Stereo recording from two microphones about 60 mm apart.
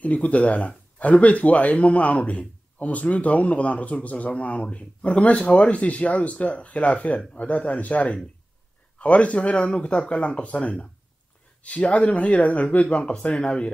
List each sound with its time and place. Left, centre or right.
0.0 s speech: left